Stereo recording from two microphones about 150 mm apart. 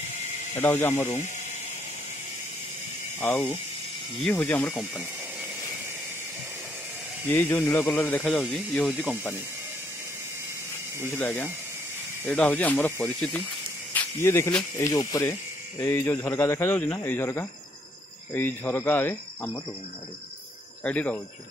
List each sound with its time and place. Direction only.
0.6 s speech: 15° left (ahead or behind)
3.2 s speech: 15° left (ahead or behind)
7.2 s speech: 15° left (ahead or behind)
11.0 s speech: 15° left (ahead or behind)
15.8 s speech: 15° left (ahead or behind)
20.8 s speech: 10° left (ahead or behind)